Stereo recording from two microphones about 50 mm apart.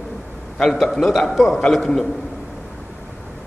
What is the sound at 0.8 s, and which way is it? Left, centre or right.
A man's voice, centre.